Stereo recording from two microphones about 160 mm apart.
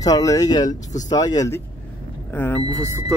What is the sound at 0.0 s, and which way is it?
Speech, 20° left (ahead or behind).